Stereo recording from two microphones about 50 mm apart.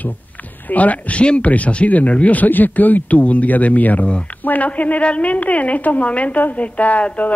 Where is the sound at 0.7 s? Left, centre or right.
Left.